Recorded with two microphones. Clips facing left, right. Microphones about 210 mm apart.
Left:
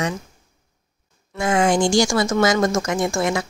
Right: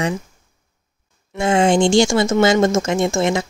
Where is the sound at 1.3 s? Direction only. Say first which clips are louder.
Right 3 dB; 25° right (ahead or behind).